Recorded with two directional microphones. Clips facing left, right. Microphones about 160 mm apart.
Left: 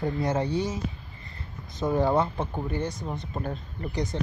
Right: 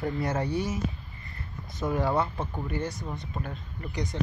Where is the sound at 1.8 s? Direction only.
20° left (ahead or behind).